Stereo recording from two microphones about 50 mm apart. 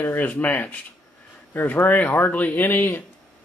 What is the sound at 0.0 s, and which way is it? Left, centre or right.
Speech, left.